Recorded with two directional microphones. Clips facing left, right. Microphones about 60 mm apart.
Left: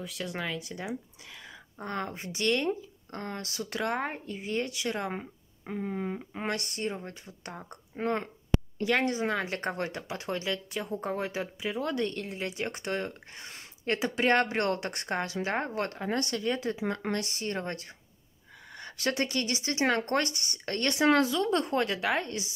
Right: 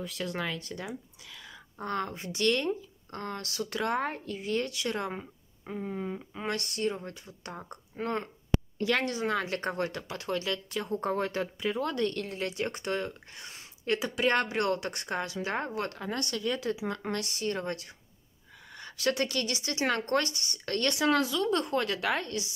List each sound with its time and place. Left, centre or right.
0.0 s speech: centre
1.3 s speech: left
10.8 s speech: centre
11.8 s speech: centre